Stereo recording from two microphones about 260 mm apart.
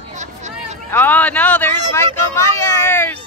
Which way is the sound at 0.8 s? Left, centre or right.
Centre.